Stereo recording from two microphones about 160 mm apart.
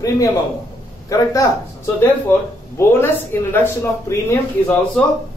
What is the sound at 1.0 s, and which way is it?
Speech, 20° left (ahead or behind).